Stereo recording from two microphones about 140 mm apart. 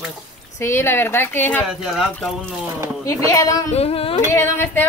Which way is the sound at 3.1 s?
25° left (ahead or behind).